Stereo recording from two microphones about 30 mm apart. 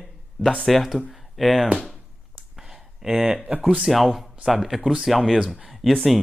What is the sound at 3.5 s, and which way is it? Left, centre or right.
Speech, right.